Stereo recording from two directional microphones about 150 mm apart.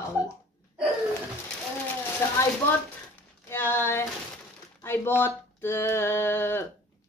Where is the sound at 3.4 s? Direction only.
15° left (ahead or behind).